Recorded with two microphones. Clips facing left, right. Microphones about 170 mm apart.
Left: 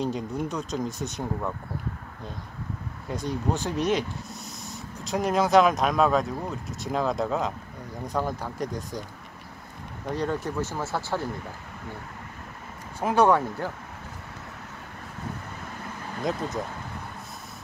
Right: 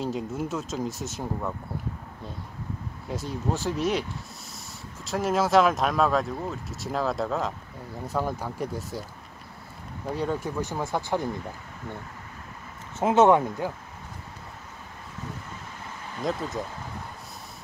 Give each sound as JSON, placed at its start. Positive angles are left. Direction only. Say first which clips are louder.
{"t": 0.0, "sound": "speech", "louder": "left 1 dB", "side_deg": -5}
{"t": 3.1, "sound": "speech", "louder": "left 2 dB", "side_deg": 0}
{"t": 5.0, "sound": "speech", "louder": "left 1 dB", "side_deg": 0}
{"t": 10.0, "sound": "speech", "louder": "even", "side_deg": -10}
{"t": 13.0, "sound": "speech", "louder": "right 2 dB", "side_deg": -20}